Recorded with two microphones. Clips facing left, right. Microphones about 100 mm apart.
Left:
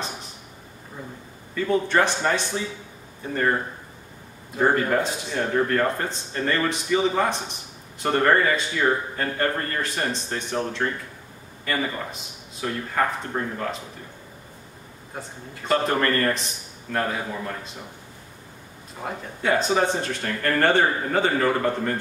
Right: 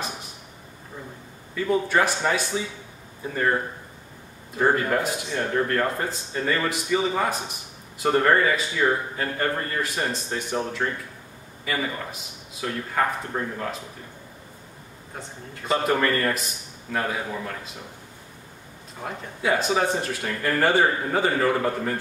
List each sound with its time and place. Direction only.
1.5 s a man's voice: 5° right (ahead or behind)
4.6 s speech: centre (ahead or behind)
15.1 s speech: centre (ahead or behind)
19.0 s speech: 5° right (ahead or behind)